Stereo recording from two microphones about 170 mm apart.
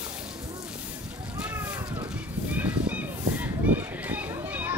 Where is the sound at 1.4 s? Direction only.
10° right (ahead or behind).